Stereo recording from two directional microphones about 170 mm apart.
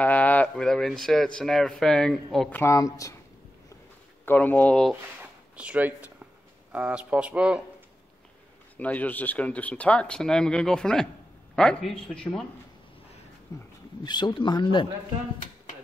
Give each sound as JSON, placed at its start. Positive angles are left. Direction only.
{"t": 0.0, "sound": "a man's voice", "side_deg": 10}
{"t": 2.6, "sound": "speech", "side_deg": 20}
{"t": 4.3, "sound": "speech", "side_deg": 10}
{"t": 5.6, "sound": "speech", "side_deg": -10}
{"t": 8.7, "sound": "a man's voice", "side_deg": 10}
{"t": 13.5, "sound": "speech", "side_deg": 20}